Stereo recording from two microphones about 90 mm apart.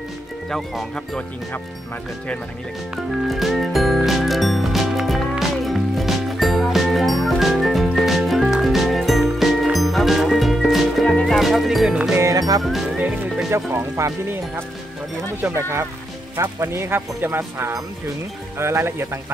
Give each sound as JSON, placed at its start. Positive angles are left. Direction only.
{"t": 0.5, "sound": "speech", "side_deg": 5}
{"t": 3.1, "sound": "music", "side_deg": 0}
{"t": 11.1, "sound": "music", "side_deg": 10}
{"t": 11.3, "sound": "music", "side_deg": 0}
{"t": 12.2, "sound": "music", "side_deg": -40}
{"t": 12.6, "sound": "speech", "side_deg": 0}
{"t": 12.9, "sound": "music", "side_deg": -15}
{"t": 14.0, "sound": "speech", "side_deg": -35}
{"t": 15.5, "sound": "speech", "side_deg": -30}